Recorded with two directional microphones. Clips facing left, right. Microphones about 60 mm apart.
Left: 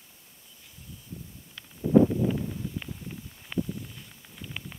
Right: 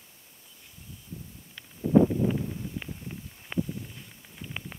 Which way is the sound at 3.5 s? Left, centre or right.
Centre.